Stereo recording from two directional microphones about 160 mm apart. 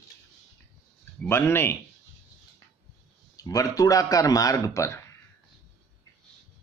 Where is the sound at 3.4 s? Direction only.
20° left (ahead or behind).